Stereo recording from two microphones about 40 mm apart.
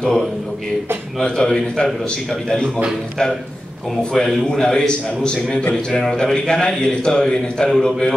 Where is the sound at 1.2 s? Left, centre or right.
Centre.